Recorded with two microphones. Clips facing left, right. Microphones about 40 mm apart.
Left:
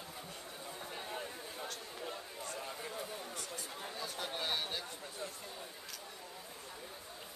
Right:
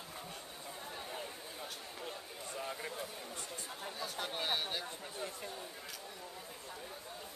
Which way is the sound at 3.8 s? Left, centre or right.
Centre.